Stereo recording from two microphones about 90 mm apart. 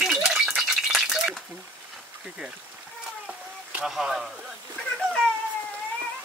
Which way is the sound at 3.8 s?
5° right (ahead or behind).